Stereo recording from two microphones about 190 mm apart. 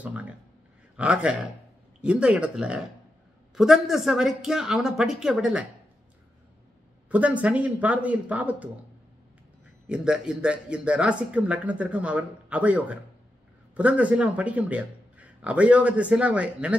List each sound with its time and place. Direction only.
0.0 s speech: 10° right (ahead or behind)
7.1 s speech: 5° right (ahead or behind)
9.8 s speech: 5° right (ahead or behind)